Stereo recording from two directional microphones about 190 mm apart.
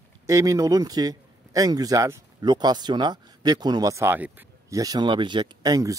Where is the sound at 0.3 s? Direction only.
15° right (ahead or behind).